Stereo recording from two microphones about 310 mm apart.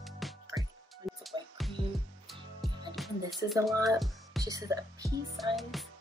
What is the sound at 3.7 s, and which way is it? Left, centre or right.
Speech, centre.